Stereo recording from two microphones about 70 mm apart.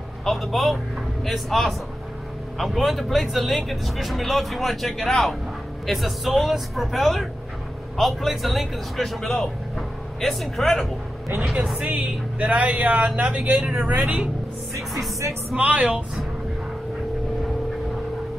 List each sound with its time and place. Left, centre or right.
0.2 s speech: centre
11.8 s speech: centre
15.0 s speech: right
15.5 s speech: centre